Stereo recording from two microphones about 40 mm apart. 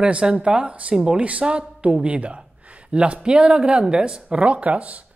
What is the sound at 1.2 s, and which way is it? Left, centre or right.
Speech, right.